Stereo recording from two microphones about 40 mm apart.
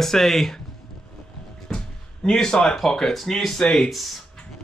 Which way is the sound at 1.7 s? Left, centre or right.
Centre.